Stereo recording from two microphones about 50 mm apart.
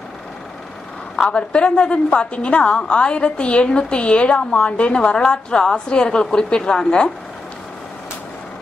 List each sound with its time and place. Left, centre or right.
1.1 s a woman's voice: centre